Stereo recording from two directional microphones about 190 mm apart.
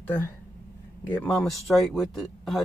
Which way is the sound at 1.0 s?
10° left (ahead or behind).